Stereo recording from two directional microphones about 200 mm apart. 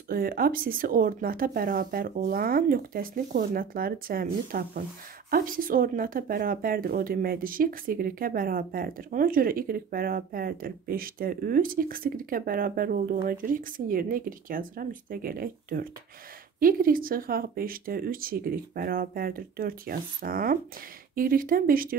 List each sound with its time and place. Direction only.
0.1 s speech: 45° right (ahead or behind)